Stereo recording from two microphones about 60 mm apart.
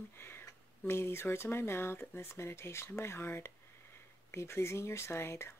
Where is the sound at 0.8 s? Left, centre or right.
Left.